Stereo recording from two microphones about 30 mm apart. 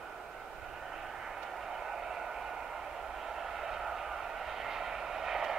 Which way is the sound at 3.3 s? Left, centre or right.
Centre.